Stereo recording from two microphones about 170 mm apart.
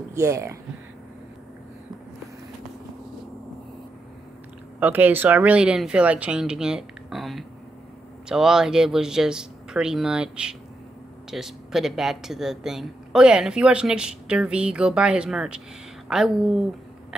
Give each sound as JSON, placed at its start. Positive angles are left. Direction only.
{"t": 0.1, "sound": "speech", "side_deg": -15}
{"t": 4.7, "sound": "speech", "side_deg": -10}